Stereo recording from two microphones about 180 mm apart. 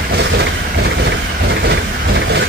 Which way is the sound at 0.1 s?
75° right (ahead or behind).